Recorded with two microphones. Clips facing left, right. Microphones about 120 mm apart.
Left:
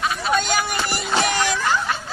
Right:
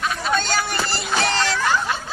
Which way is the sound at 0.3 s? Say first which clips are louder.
Left 1 dB; 10° left (ahead or behind).